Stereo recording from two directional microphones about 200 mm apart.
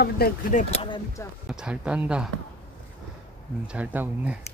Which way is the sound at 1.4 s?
5° right (ahead or behind).